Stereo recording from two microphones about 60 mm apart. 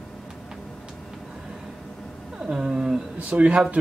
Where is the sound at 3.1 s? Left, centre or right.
Right.